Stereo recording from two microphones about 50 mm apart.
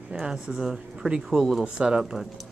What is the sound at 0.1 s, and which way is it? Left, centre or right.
Speech, centre.